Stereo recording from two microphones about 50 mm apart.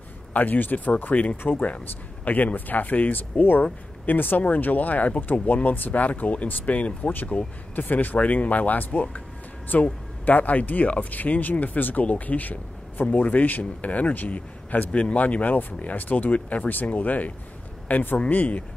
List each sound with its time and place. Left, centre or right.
0.3 s speech: left